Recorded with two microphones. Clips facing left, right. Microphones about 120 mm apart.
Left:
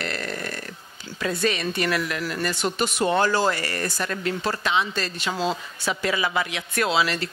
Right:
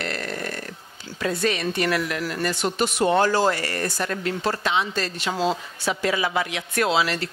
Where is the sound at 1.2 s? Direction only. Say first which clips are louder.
Right 1 dB; 50° right (ahead or behind).